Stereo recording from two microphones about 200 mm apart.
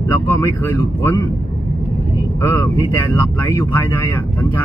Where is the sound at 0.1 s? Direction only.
15° left (ahead or behind).